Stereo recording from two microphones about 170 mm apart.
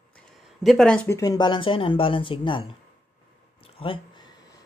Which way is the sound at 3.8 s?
35° left (ahead or behind).